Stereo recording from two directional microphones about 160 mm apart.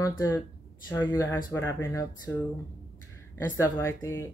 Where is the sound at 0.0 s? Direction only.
20° left (ahead or behind).